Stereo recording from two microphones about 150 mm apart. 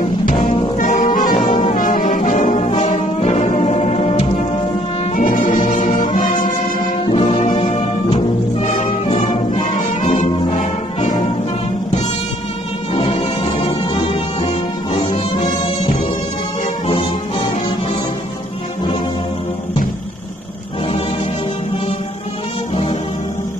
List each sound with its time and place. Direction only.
0.7 s brass instrument: 60° left (ahead or behind)
3.3 s music: 50° left (ahead or behind)
5.1 s brass instrument: 60° left (ahead or behind)
7.1 s music: 40° left (ahead or behind)
10.0 s brass instrument: 50° left (ahead or behind)
12.9 s music: 40° left (ahead or behind)
16.8 s music: 40° left (ahead or behind)